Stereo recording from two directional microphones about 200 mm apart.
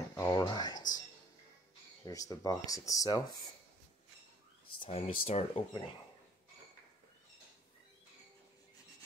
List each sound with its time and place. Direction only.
0.1 s a sound: 15° left (ahead or behind)
2.0 s speech: 20° left (ahead or behind)
4.7 s speech: 30° left (ahead or behind)